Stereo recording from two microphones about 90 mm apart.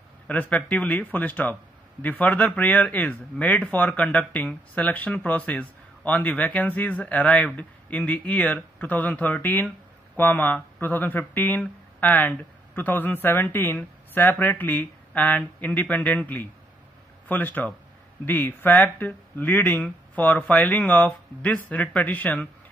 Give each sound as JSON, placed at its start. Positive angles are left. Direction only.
{"t": 0.3, "sound": "speech", "side_deg": 15}